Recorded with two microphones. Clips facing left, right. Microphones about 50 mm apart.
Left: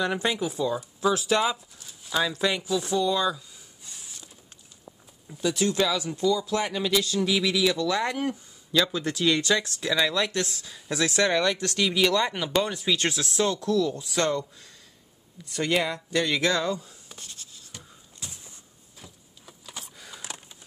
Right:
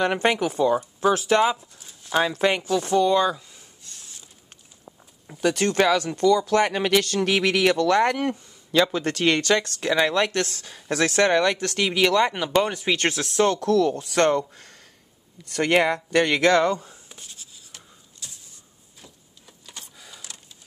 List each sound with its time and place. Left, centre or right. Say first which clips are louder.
0.0 s speech: right 5 dB; right
1.4 s speech: right 5 dB; right
3.8 s mechanisms: left 1 dB; centre
5.4 s speech: right 4 dB; right
15.4 s speech: right 6 dB; right
17.1 s writing: even; centre
18.2 s a sound: left 1 dB; left
18.9 s power windows: even; centre